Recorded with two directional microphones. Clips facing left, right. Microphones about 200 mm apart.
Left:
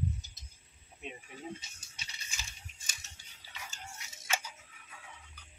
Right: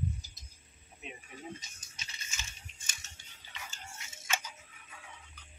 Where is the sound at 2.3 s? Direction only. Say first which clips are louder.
Even; 35° left (ahead or behind).